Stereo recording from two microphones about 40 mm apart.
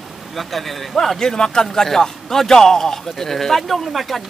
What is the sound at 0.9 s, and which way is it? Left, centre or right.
A man's voice, centre.